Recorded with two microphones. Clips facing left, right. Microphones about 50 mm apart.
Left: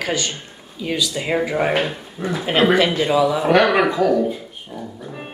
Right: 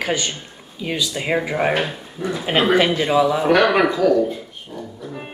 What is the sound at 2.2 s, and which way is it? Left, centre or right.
Speech, centre.